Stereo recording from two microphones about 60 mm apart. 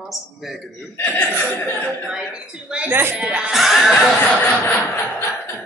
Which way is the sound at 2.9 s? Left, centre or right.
Right.